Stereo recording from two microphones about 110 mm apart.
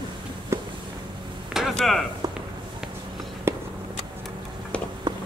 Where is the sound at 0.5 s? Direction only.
25° right (ahead or behind).